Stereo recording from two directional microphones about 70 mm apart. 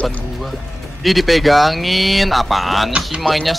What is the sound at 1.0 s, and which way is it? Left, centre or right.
Speech, centre.